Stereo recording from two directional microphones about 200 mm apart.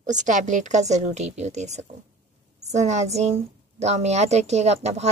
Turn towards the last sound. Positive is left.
turn(degrees=-35)  # may be behind; listen again after turning